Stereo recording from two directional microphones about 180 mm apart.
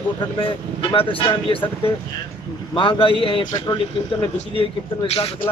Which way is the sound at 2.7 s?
25° left (ahead or behind).